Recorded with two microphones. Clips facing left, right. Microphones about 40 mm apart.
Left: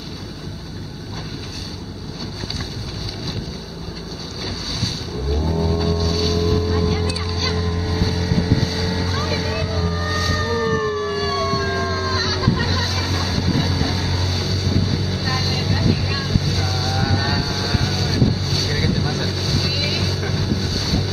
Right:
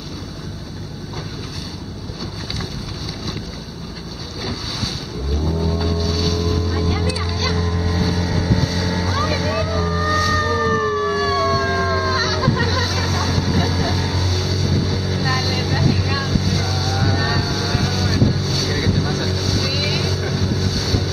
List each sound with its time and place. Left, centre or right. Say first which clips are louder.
5.5 s boat: left 1 dB; centre
7.3 s vehicle: right 1 dB; centre